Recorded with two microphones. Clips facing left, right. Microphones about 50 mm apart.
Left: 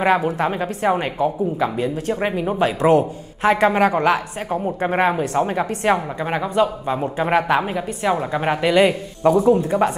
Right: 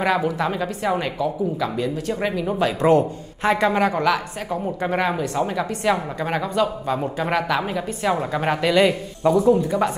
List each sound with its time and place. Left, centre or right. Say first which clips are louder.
0.0 s speech: left 3 dB; left
2.8 s a woman's voice: left 1 dB; centre
3.5 s a woman's voice: left 3 dB; left
5.9 s a woman's voice: left 1 dB; centre
8.0 s a woman's voice: left 2 dB; centre
9.3 s speech: left 1 dB; left